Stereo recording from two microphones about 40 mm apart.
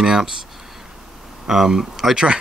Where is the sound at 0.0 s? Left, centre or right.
Centre.